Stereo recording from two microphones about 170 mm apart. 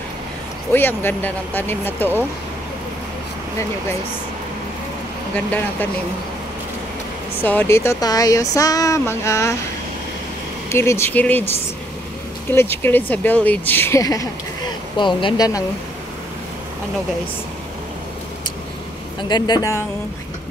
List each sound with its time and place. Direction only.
0.7 s speech: 10° left (ahead or behind)
5.3 s speech: 10° left (ahead or behind)
7.4 s speech: 15° left (ahead or behind)
10.7 s speech: 15° left (ahead or behind)
12.5 s speech: 15° left (ahead or behind)
19.2 s speech: 25° left (ahead or behind)